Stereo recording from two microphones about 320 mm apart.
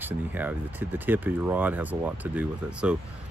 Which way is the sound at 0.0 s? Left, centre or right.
Centre.